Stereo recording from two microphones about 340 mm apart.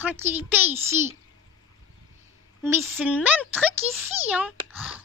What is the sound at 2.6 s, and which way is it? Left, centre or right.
A woman's voice, centre.